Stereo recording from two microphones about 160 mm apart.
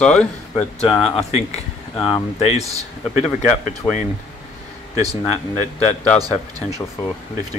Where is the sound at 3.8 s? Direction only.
25° left (ahead or behind).